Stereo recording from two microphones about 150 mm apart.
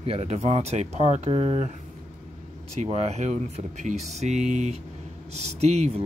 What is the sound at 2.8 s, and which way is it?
Speech, 45° right (ahead or behind).